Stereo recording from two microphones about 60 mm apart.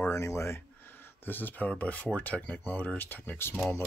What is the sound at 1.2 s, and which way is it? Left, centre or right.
Speech, left.